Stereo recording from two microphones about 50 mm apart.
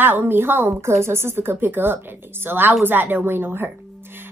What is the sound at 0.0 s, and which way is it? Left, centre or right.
A woman's voice, right.